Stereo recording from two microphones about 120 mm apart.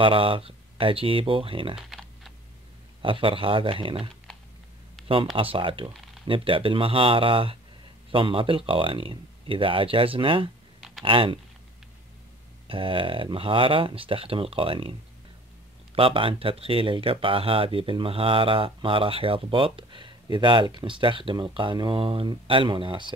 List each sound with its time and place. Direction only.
0.0 s speech: 50° right (ahead or behind)
1.8 s typing: centre (ahead or behind)
3.0 s speech: 45° right (ahead or behind)
12.6 s speech: 45° right (ahead or behind)